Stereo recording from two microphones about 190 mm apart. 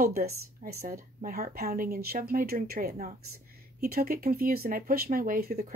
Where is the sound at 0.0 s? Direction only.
55° right (ahead or behind).